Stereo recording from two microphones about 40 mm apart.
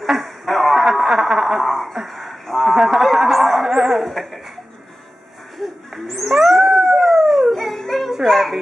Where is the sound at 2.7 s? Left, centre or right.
Centre.